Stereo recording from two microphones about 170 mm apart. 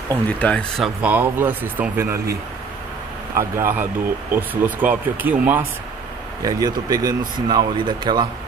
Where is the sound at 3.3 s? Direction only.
15° right (ahead or behind).